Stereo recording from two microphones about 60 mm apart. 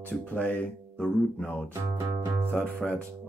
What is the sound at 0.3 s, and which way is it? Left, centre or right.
Speech, left.